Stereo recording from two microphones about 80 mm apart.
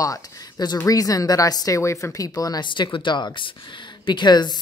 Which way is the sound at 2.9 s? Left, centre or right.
Left.